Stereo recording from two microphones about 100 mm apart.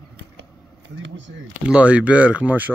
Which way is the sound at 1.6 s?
10° right (ahead or behind).